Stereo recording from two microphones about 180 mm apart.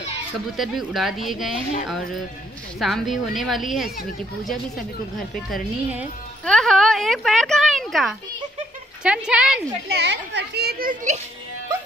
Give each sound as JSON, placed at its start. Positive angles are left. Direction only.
{"t": 0.6, "sound": "a woman's voice", "side_deg": 0}
{"t": 2.8, "sound": "a woman's voice", "side_deg": 0}
{"t": 5.3, "sound": "a woman's voice", "side_deg": -5}
{"t": 9.8, "sound": "a child's voice", "side_deg": -70}